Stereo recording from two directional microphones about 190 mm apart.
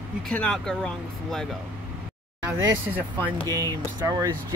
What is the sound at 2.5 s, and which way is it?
Speech, 10° right (ahead or behind).